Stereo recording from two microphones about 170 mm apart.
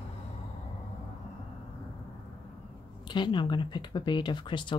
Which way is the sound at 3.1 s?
25° left (ahead or behind).